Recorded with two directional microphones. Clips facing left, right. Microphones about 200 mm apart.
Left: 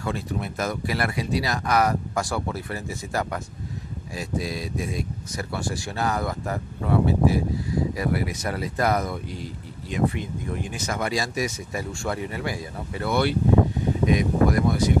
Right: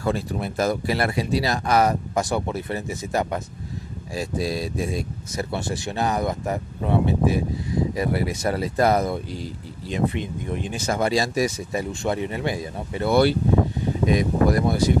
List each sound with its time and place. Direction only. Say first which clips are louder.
0.0 s speech: right 4 dB; 35° right (ahead or behind)
4.1 s speech: right 4 dB; 30° right (ahead or behind)
11.7 s speech: right 4 dB; 20° right (ahead or behind)
13.1 s speech: right 2 dB; 35° right (ahead or behind)